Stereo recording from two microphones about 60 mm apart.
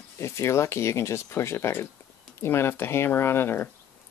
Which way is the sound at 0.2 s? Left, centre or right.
Left.